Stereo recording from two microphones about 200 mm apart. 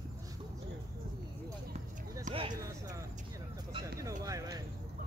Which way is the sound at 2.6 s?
15° right (ahead or behind).